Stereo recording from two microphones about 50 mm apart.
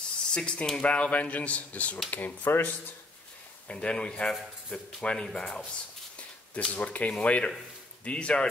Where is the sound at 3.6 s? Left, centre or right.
Centre.